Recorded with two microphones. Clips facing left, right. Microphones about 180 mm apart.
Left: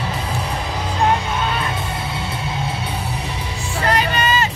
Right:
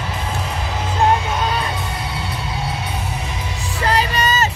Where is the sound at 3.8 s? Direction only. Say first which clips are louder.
Even; 35° right (ahead or behind).